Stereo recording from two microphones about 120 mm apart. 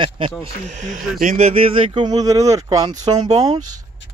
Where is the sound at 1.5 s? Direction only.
50° right (ahead or behind).